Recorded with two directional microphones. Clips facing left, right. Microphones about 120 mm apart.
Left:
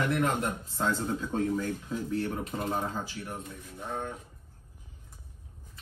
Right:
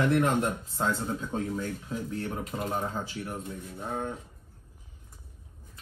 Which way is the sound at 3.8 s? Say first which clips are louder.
Right 2 dB; 30° right (ahead or behind).